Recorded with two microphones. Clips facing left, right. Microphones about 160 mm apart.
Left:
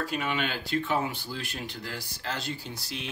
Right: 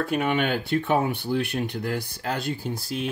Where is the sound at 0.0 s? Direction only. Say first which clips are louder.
Right 7 dB; 55° right (ahead or behind).